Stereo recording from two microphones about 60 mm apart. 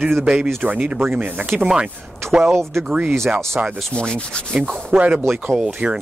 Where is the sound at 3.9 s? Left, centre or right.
Centre.